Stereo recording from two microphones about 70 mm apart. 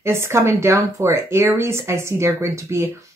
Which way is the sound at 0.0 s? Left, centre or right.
Right.